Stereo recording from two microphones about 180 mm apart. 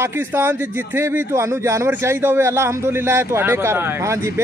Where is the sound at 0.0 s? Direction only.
15° right (ahead or behind).